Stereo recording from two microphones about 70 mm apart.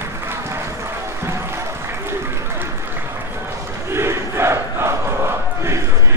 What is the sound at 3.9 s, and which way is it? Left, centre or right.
Crowd, right.